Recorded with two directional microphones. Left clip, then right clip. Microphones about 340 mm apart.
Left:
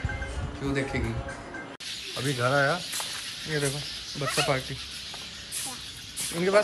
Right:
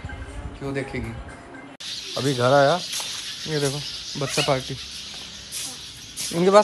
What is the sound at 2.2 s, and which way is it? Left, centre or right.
Speech, centre.